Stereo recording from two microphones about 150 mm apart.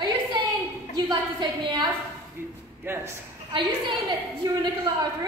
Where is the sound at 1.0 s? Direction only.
30° right (ahead or behind).